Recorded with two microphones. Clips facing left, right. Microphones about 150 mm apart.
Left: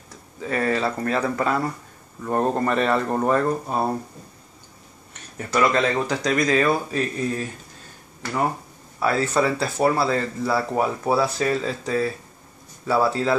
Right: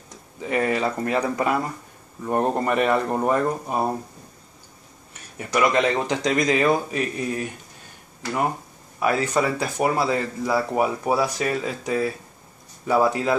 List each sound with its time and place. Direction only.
0.4 s speech: 15° right (ahead or behind)
5.4 s speech: 15° right (ahead or behind)
9.0 s speech: 15° right (ahead or behind)